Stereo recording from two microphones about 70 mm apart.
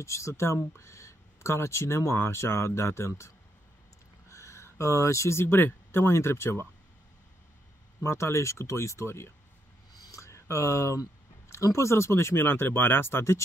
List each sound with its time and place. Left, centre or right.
0.0 s speech: left
8.0 s speech: left
10.1 s a sound: left
11.5 s speech: left